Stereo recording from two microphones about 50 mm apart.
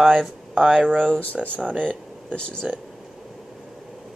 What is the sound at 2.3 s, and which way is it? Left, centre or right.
Speech, left.